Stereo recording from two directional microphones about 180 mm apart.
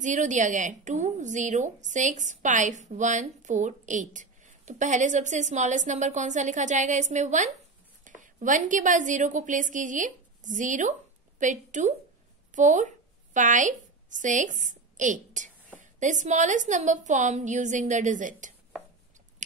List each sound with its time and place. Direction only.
0.0 s a woman's voice: 45° right (ahead or behind)